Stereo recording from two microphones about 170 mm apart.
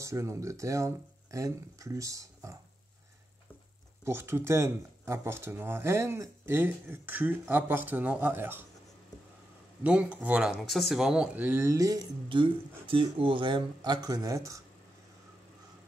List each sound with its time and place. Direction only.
0.0 s speech: 15° right (ahead or behind)
4.0 s speech: 15° right (ahead or behind)
9.8 s speech: 5° right (ahead or behind)